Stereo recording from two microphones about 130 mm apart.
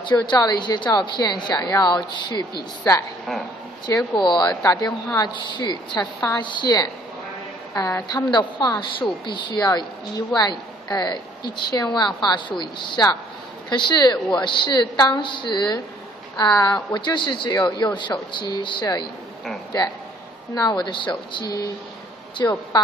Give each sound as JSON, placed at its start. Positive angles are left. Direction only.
{"t": 0.0, "sound": "speech", "side_deg": 30}
{"t": 3.9, "sound": "a woman's voice", "side_deg": 20}
{"t": 4.2, "sound": "a woman's voice", "side_deg": 35}
{"t": 20.5, "sound": "a woman's voice", "side_deg": 30}